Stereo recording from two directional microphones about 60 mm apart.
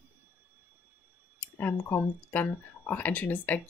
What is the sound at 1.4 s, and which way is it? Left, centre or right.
Speech, left.